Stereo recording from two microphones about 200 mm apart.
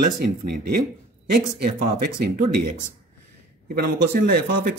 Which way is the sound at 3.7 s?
45° right (ahead or behind).